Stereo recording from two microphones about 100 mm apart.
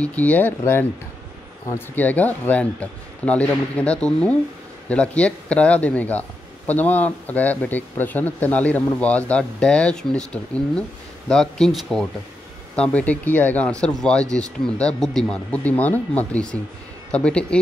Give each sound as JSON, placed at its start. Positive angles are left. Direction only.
{"t": 0.0, "sound": "speech", "side_deg": 15}
{"t": 2.0, "sound": "speech", "side_deg": 15}